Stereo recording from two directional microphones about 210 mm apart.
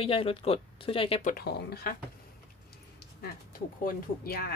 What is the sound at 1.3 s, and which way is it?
Speech, 45° left (ahead or behind).